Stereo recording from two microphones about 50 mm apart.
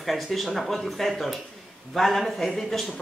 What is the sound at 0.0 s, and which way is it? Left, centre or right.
Speech, centre.